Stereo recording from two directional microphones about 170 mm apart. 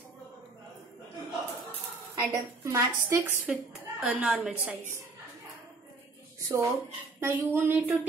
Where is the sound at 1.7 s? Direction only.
20° right (ahead or behind).